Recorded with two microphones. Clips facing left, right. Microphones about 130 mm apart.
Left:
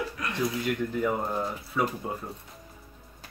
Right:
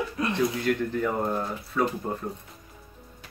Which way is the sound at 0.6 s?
10° left (ahead or behind).